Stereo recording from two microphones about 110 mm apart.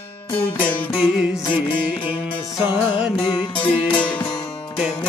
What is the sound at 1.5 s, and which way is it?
Music, 50° left (ahead or behind).